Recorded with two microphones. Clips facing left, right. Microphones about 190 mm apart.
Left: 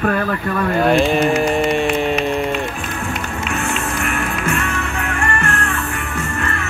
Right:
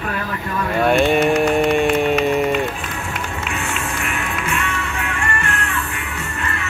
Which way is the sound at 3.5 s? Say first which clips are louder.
Left 6 dB; 50° left (ahead or behind).